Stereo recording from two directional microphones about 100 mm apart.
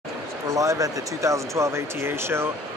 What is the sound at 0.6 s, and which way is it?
Speech, 35° right (ahead or behind).